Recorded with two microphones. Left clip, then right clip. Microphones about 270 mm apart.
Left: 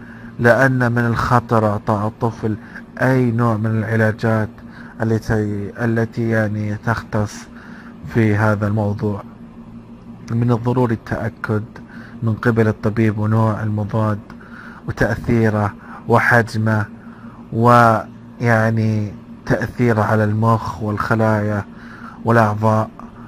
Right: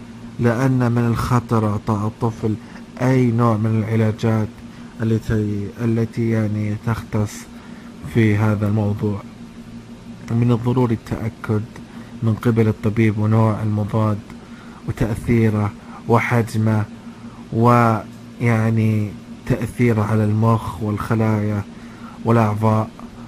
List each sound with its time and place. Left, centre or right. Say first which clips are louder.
0.4 s a man's voice: left 7 dB; centre
5.0 s speech: left 3 dB; left
6.3 s a man's voice: left 4 dB; centre
10.2 s a man's voice: left 1 dB; centre